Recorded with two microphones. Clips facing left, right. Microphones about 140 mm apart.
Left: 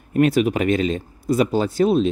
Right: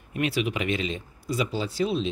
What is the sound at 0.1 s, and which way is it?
Speech, 45° left (ahead or behind).